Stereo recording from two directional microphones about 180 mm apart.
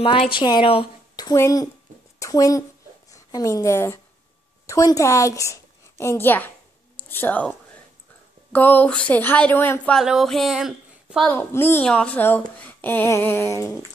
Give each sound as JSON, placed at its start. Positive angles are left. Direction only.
{"t": 0.0, "sound": "speech", "side_deg": 30}
{"t": 2.1, "sound": "a sound", "side_deg": 20}
{"t": 3.1, "sound": "a woman's voice", "side_deg": 20}
{"t": 9.9, "sound": "a woman's voice", "side_deg": 0}
{"t": 11.2, "sound": "a woman's voice", "side_deg": 10}